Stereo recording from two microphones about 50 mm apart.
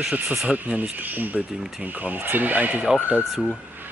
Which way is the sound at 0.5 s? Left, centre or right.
Right.